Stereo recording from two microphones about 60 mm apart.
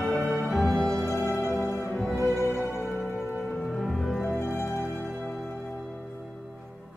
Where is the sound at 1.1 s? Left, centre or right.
Left.